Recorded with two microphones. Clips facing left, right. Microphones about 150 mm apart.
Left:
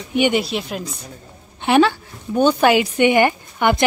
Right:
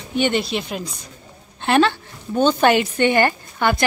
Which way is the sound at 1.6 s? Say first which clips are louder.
Left 2 dB; 10° left (ahead or behind).